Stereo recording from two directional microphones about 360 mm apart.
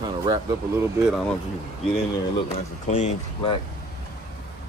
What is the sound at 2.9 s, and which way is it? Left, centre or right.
Speech, centre.